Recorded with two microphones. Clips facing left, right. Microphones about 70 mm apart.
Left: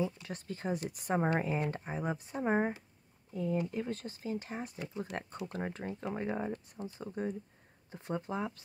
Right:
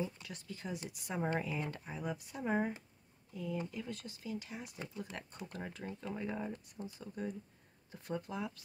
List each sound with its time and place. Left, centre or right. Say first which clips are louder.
0.2 s speech: left 6 dB; left